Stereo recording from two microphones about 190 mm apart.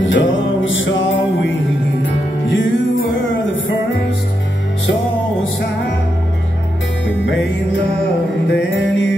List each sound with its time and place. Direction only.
0.0 s music: 85° left
2.5 s music: 80° left
7.1 s music: 70° left (ahead or behind)
8.5 s music: 70° left (ahead or behind)